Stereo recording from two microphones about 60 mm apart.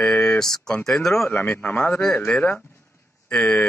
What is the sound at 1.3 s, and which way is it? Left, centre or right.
Speech, left.